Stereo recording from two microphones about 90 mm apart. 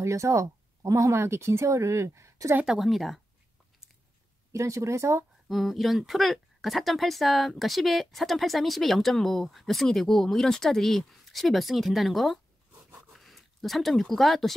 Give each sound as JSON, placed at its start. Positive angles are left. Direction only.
{"t": 0.0, "sound": "speech", "side_deg": -35}
{"t": 2.6, "sound": "speech", "side_deg": -5}
{"t": 4.5, "sound": "speech", "side_deg": -35}
{"t": 5.5, "sound": "speech", "side_deg": 0}